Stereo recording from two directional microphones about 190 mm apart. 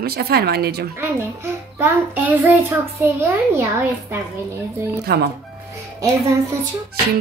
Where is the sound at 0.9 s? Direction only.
15° right (ahead or behind).